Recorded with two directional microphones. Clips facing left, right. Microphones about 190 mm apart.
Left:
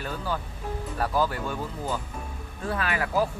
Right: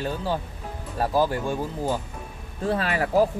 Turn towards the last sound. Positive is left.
turn(degrees=-30)  # may be behind; listen again after turning